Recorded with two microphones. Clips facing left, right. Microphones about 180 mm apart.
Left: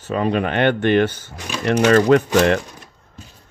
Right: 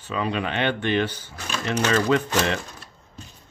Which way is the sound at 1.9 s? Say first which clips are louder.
Left 7 dB; 50° left (ahead or behind).